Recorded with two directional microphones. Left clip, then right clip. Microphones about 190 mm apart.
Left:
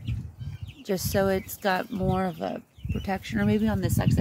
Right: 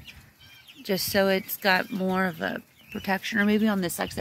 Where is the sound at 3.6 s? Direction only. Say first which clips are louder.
Right 1 dB; 15° right (ahead or behind).